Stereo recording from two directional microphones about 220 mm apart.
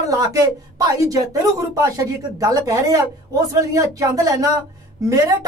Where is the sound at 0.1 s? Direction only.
15° right (ahead or behind).